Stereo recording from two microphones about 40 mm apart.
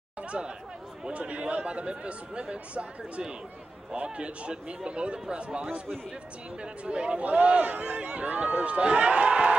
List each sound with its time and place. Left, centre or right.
0.2 s chatter: right
1.1 s a man's voice: right